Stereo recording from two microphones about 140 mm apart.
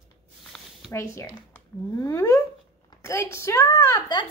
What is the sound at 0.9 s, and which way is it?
A woman's voice, 20° left (ahead or behind).